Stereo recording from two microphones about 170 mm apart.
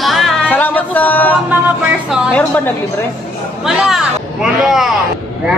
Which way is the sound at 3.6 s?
5° right (ahead or behind).